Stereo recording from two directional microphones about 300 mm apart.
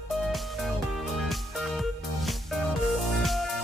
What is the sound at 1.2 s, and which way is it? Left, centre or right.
Music, centre.